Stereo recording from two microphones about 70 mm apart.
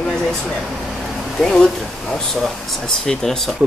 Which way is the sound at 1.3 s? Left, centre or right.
Centre.